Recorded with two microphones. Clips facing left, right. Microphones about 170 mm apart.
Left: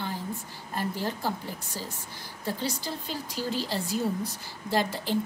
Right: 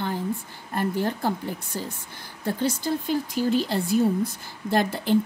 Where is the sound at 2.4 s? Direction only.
50° right (ahead or behind).